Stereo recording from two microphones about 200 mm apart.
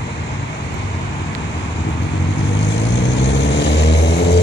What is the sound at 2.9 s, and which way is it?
Vehicle, 60° left (ahead or behind).